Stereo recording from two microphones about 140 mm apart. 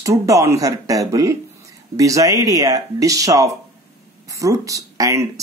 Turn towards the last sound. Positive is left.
turn(degrees=-25)  # may be behind; listen again after turning